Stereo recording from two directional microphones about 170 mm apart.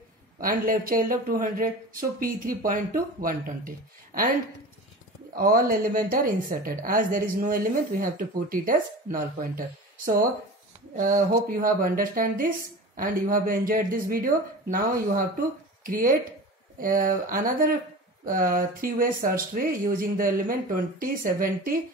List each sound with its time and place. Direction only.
0.4 s a woman's voice: 55° right (ahead or behind)
5.3 s a woman's voice: 60° right (ahead or behind)